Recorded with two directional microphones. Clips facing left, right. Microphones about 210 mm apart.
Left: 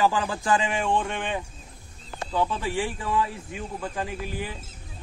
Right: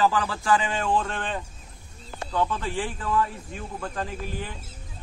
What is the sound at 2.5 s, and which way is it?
A man's voice, 10° left (ahead or behind).